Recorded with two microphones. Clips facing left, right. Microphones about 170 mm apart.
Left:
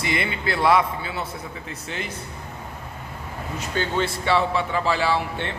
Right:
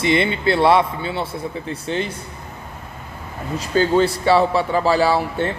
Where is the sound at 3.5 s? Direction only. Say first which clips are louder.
Right 9 dB; 35° right (ahead or behind).